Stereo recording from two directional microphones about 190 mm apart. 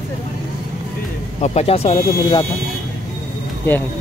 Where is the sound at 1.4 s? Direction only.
35° left (ahead or behind).